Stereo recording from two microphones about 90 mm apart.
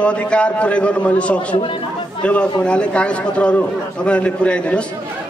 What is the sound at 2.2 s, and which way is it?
A man's voice, 15° left (ahead or behind).